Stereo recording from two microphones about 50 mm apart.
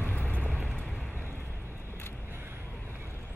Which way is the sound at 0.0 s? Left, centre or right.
Left.